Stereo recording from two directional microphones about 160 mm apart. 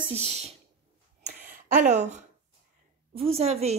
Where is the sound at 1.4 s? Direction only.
55° right (ahead or behind).